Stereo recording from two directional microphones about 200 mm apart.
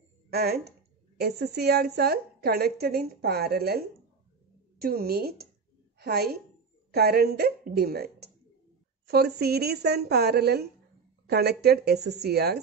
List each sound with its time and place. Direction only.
0.3 s a woman's voice: 50° right (ahead or behind)